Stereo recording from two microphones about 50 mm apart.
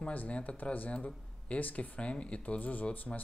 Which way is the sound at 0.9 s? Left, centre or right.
Left.